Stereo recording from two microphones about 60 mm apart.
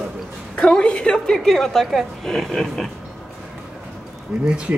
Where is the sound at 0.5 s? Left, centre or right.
Centre.